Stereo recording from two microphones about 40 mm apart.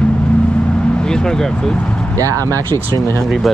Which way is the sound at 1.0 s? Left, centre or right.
Centre.